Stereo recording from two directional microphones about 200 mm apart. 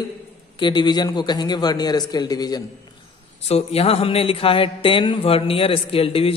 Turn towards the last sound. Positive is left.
turn(degrees=30)  # may be behind; listen again after turning